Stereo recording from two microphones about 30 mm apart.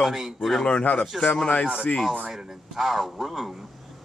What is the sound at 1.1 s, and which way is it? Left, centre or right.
Chopping, centre.